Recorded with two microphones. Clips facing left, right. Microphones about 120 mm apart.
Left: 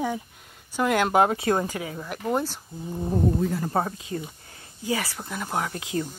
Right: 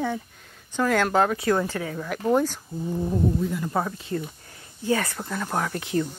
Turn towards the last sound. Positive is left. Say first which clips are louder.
# right 3 dB
turn(degrees=-40)  # may be behind; listen again after turning